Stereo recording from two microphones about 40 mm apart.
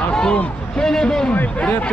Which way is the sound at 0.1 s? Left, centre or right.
Centre.